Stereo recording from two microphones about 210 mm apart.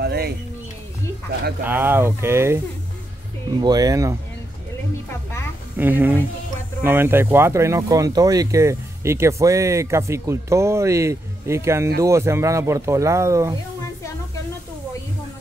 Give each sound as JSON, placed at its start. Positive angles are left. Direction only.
{"t": 0.0, "sound": "a sound", "side_deg": -50}
{"t": 1.6, "sound": "speech", "side_deg": -10}
{"t": 3.6, "sound": "speech", "side_deg": -15}
{"t": 5.8, "sound": "speech", "side_deg": -10}